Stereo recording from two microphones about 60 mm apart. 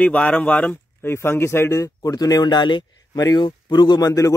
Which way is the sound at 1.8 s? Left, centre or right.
Left.